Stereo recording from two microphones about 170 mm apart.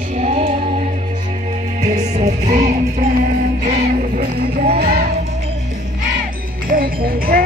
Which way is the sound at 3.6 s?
45° right (ahead or behind).